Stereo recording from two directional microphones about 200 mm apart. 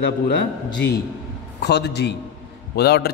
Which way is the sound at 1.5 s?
55° left (ahead or behind).